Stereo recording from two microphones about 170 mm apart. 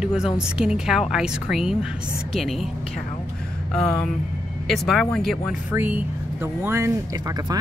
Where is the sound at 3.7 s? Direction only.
5° left (ahead or behind).